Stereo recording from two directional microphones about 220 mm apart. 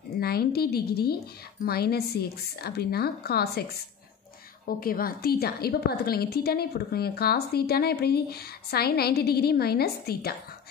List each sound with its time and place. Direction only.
0.2 s a woman's voice: 45° left (ahead or behind)
4.6 s a woman's voice: 40° left (ahead or behind)